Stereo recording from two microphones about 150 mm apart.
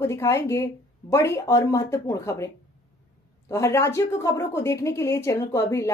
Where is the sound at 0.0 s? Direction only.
20° left (ahead or behind).